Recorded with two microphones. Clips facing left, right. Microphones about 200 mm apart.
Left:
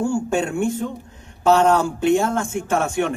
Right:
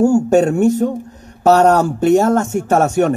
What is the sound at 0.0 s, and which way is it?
A man's voice, 40° right (ahead or behind).